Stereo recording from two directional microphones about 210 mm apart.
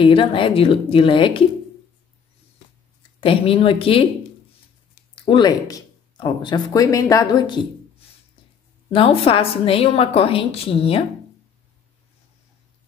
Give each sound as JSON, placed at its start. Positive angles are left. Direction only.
{"t": 0.0, "sound": "a woman's voice", "side_deg": 25}
{"t": 3.2, "sound": "a woman's voice", "side_deg": 25}
{"t": 5.1, "sound": "speech", "side_deg": 25}
{"t": 8.9, "sound": "a woman's voice", "side_deg": 25}